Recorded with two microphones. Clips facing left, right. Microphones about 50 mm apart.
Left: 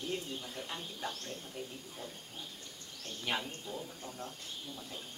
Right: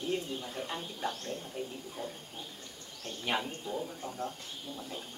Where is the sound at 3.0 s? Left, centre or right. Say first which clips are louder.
Right 3 dB; centre.